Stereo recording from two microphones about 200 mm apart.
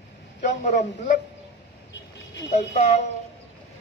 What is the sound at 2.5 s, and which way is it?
Speech, 35° left (ahead or behind).